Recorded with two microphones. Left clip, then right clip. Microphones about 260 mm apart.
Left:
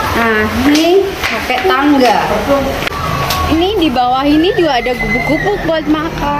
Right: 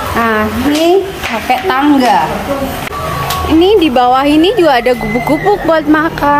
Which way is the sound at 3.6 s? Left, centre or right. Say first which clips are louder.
Right 6 dB; centre.